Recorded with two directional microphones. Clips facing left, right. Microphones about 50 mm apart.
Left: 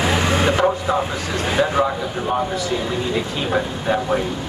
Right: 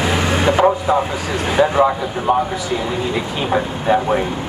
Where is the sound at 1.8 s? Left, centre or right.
Centre.